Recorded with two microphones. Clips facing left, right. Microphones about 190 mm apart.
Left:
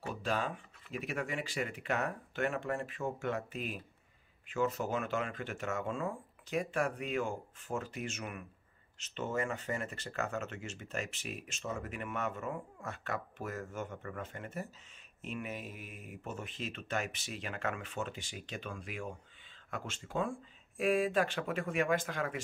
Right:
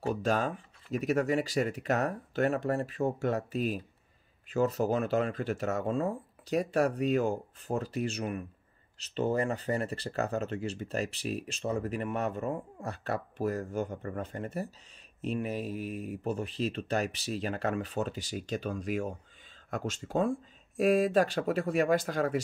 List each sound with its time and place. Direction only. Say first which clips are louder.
0.0 s speech: right 7 dB; 40° right (ahead or behind)